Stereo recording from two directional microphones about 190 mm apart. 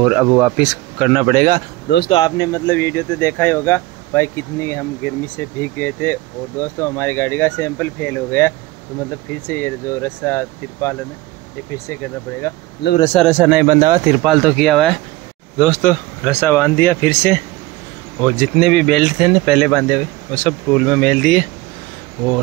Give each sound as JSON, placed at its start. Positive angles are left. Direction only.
{"t": 0.0, "sound": "speech", "side_deg": -5}
{"t": 1.3, "sound": "a man's voice", "side_deg": -55}
{"t": 2.0, "sound": "speech", "side_deg": 20}
{"t": 13.1, "sound": "speech", "side_deg": 0}
{"t": 13.7, "sound": "speech", "side_deg": -20}
{"t": 14.0, "sound": "speech", "side_deg": -5}
{"t": 18.4, "sound": "speech", "side_deg": 5}